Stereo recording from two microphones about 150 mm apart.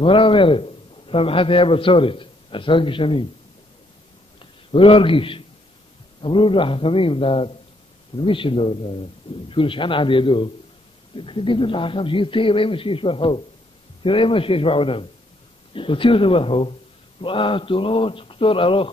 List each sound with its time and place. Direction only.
0.0 s a man's voice: 35° left (ahead or behind)
4.4 s a man's voice: 35° left (ahead or behind)